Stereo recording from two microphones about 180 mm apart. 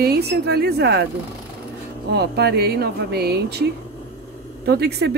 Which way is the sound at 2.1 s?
65° right (ahead or behind).